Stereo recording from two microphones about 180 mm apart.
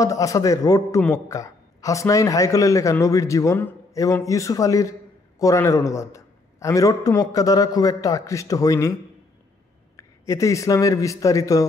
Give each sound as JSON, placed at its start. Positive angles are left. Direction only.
{"t": 0.0, "sound": "a man's voice", "side_deg": 20}
{"t": 9.9, "sound": "speech", "side_deg": 15}